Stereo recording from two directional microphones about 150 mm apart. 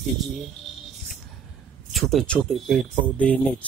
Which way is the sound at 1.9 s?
Centre (ahead or behind).